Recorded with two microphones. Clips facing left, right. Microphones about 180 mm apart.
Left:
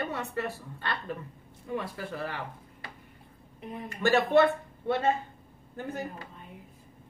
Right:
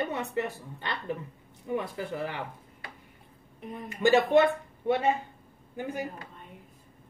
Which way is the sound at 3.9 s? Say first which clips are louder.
Right 2 dB; 15° right (ahead or behind).